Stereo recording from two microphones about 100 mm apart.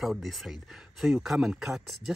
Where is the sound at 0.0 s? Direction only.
Centre (ahead or behind).